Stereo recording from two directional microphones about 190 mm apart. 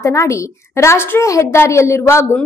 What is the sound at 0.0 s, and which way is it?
A woman's voice, 15° left (ahead or behind).